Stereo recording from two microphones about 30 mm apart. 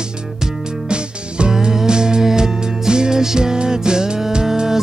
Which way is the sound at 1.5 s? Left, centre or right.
Right.